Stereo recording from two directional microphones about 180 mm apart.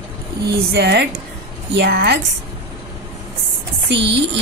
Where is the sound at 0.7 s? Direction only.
70° right (ahead or behind).